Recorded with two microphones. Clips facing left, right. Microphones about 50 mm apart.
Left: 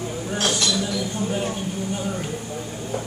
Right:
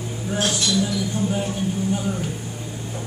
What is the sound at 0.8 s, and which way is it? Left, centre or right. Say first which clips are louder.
Speech: right 2 dB; centre.